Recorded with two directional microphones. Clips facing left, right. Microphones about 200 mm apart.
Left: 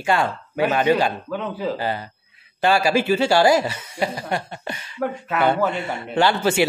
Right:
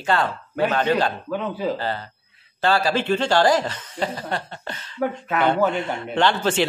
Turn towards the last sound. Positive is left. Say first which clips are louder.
# left 1 dB
turn(degrees=10)  # may be behind; listen again after turning